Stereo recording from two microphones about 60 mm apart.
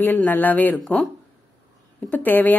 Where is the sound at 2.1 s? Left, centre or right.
Left.